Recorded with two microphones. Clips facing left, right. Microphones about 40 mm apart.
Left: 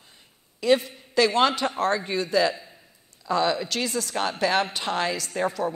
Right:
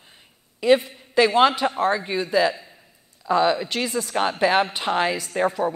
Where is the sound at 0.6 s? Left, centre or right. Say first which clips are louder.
Right 3 dB; centre.